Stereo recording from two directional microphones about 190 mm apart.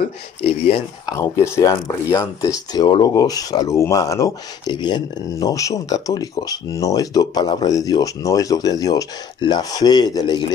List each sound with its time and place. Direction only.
0.0 s speech: 30° left (ahead or behind)
1.1 s speech: 15° left (ahead or behind)